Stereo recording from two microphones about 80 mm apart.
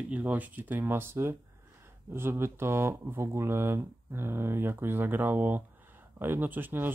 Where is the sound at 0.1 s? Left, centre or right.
Centre.